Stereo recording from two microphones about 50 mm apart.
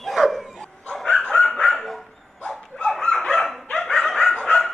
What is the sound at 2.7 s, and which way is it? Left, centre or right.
Chicken, centre.